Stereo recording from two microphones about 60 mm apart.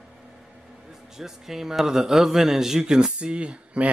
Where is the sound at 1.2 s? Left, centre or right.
Centre.